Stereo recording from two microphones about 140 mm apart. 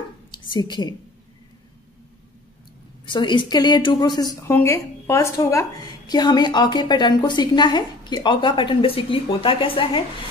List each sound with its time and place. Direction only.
0.3 s a woman's voice: 35° left (ahead or behind)
3.1 s a woman's voice: 35° left (ahead or behind)
4.5 s a woman's voice: 15° left (ahead or behind); by 10.0 s 40° left (ahead or behind)